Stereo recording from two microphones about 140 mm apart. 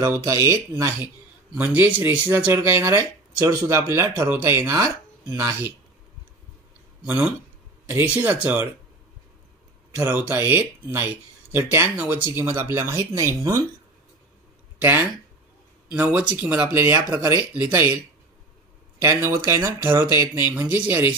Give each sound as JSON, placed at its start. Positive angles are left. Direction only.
{"t": 0.0, "sound": "speech", "side_deg": -20}
{"t": 7.9, "sound": "speech", "side_deg": -15}
{"t": 9.9, "sound": "speech", "side_deg": -15}
{"t": 14.8, "sound": "speech", "side_deg": -15}
{"t": 18.9, "sound": "speech", "side_deg": -20}